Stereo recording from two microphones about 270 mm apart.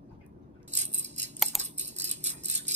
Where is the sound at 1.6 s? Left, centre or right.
Right.